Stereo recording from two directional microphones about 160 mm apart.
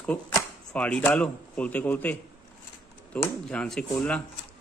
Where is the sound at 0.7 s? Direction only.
5° left (ahead or behind).